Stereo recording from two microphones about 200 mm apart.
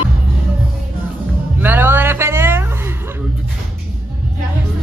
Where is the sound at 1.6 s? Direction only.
10° right (ahead or behind).